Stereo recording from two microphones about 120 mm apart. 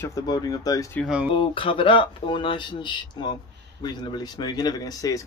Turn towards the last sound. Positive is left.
turn(degrees=30)  # may be behind; listen again after turning